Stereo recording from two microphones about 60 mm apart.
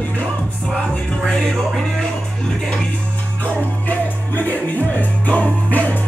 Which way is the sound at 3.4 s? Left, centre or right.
Left.